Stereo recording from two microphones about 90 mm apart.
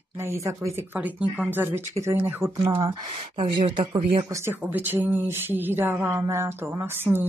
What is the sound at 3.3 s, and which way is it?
Speech, 70° right (ahead or behind).